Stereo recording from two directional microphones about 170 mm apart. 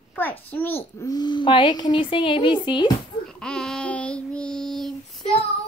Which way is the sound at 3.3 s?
5° left (ahead or behind).